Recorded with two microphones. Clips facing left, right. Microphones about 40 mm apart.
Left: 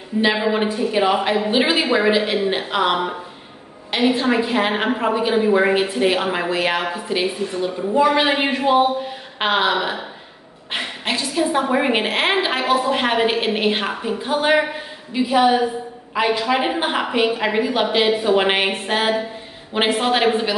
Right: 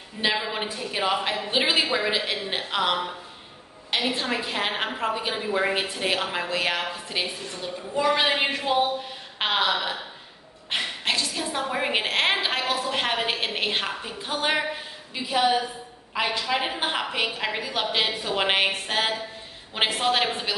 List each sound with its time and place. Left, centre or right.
0.4 s a woman's voice: centre
4.1 s a woman's voice: centre
10.7 s a sound: centre
11.7 s a woman's voice: centre